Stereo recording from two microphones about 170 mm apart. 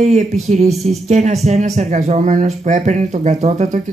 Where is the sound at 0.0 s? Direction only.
40° right (ahead or behind).